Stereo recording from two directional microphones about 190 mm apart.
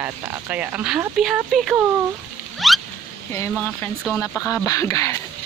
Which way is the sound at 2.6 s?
Centre (ahead or behind).